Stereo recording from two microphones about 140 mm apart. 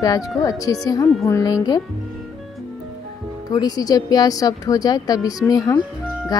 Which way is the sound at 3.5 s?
25° left (ahead or behind).